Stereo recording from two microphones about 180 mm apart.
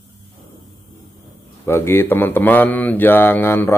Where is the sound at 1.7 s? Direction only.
15° left (ahead or behind).